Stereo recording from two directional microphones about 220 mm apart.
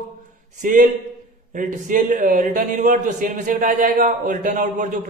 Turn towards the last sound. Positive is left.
turn(degrees=-35)  # may be behind; listen again after turning